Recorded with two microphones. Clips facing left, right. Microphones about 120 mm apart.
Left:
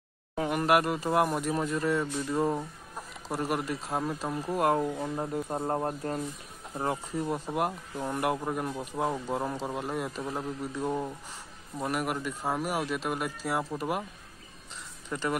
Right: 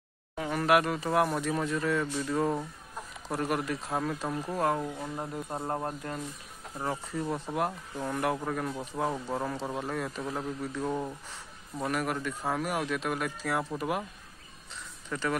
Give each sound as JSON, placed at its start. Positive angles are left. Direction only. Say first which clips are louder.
{"t": 0.5, "sound": "speech", "louder": "even", "side_deg": 10}
{"t": 5.7, "sound": "speech", "louder": "left 3 dB", "side_deg": 25}
{"t": 7.2, "sound": "speech", "louder": "even", "side_deg": 10}
{"t": 15.0, "sound": "speech", "louder": "even", "side_deg": 10}